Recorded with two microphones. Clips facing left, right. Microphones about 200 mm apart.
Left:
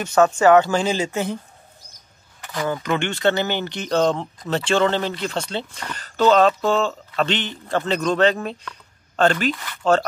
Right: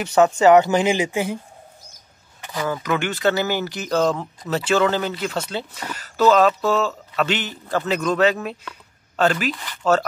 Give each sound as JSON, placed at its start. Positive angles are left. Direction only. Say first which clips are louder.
{"t": 0.0, "sound": "speech", "louder": "right 1 dB", "side_deg": -15}
{"t": 2.8, "sound": "speech", "louder": "even", "side_deg": -5}